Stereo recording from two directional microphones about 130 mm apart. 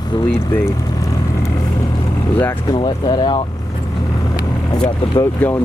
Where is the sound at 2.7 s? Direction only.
35° left (ahead or behind).